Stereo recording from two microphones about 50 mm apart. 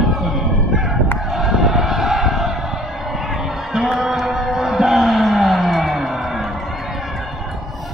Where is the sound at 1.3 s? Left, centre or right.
Centre.